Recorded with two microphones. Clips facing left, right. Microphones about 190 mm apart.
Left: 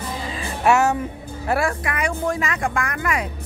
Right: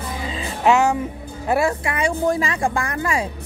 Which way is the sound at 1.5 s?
20° right (ahead or behind).